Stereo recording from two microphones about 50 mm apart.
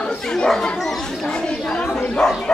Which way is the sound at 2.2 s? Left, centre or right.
Centre.